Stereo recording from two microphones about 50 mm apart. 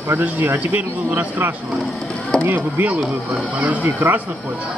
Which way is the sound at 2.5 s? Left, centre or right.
Right.